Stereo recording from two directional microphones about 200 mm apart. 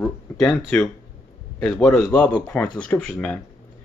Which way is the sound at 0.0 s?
5° left (ahead or behind).